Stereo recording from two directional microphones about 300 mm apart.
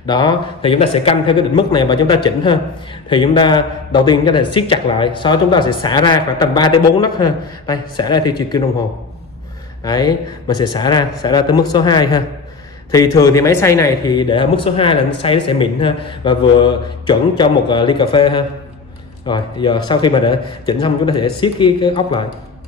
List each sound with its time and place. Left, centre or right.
0.0 s a man's voice: centre
9.8 s a man's voice: centre